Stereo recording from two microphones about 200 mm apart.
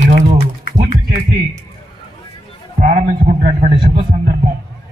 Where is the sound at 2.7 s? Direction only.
40° right (ahead or behind).